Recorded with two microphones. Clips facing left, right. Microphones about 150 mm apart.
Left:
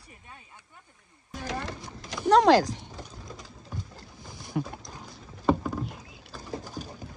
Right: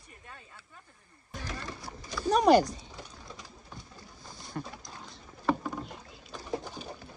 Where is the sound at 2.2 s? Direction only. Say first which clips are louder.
Left 3 dB; 90° left.